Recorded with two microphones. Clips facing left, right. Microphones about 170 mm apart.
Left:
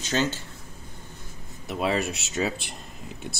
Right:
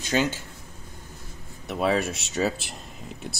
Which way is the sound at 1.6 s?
Centre (ahead or behind).